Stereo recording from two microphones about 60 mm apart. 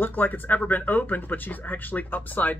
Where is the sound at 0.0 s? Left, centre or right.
Left.